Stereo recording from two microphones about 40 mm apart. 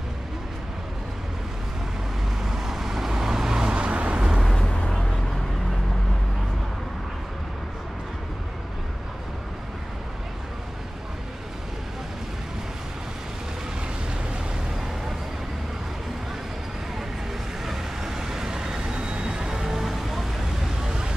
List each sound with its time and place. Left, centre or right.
2.4 s vehicle: centre; by 4.2 s right
17.6 s vehicle: centre
19.6 s vehicle: centre